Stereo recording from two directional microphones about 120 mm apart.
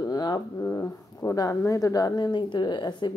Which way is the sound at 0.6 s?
25° left (ahead or behind).